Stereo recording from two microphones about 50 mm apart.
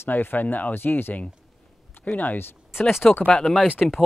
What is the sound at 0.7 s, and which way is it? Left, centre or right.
Speech, left.